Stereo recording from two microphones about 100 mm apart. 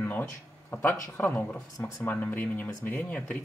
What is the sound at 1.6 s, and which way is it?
Speech, 35° left (ahead or behind).